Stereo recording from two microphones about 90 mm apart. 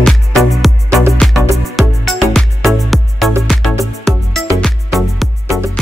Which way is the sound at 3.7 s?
35° right (ahead or behind).